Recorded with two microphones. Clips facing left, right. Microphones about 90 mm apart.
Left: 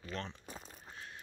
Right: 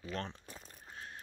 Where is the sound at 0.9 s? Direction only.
40° right (ahead or behind).